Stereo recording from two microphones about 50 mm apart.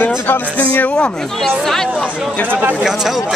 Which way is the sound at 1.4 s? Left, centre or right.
Centre.